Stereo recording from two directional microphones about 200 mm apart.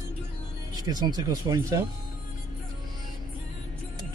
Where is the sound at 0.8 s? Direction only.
20° right (ahead or behind).